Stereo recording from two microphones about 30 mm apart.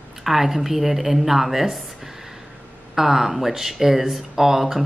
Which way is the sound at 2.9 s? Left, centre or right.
Centre.